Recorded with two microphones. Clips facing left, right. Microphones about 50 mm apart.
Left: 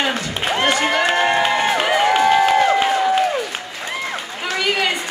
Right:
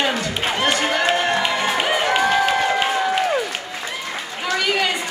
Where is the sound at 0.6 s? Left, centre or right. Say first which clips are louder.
Left 2 dB; left.